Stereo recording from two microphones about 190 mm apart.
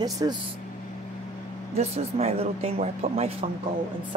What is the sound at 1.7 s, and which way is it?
Speech, 35° right (ahead or behind).